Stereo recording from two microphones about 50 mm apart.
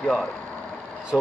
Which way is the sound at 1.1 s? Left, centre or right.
Centre.